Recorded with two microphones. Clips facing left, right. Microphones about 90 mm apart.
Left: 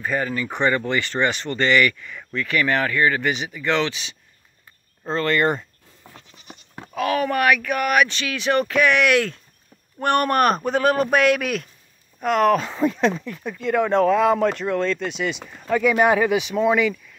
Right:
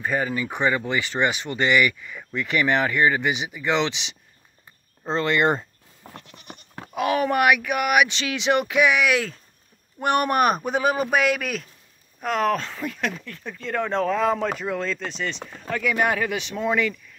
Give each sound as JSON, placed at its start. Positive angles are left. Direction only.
{"t": 0.0, "sound": "speech", "side_deg": -15}
{"t": 2.4, "sound": "speech", "side_deg": -20}
{"t": 6.1, "sound": "goat", "side_deg": -60}
{"t": 6.7, "sound": "bleat", "side_deg": -5}
{"t": 7.0, "sound": "speech", "side_deg": -20}
{"t": 12.6, "sound": "speech", "side_deg": 25}
{"t": 15.7, "sound": "speech", "side_deg": 20}